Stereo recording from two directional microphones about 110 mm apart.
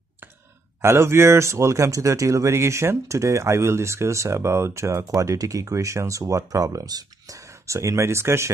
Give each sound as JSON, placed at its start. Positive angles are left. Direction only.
{"t": 0.8, "sound": "speech", "side_deg": -25}